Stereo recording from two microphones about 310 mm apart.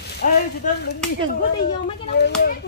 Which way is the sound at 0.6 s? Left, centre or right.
Left.